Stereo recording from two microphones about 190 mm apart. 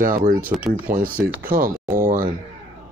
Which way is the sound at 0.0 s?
45° right (ahead or behind).